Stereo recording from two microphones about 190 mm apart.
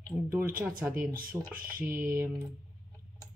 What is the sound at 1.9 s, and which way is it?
Typing, 50° right (ahead or behind).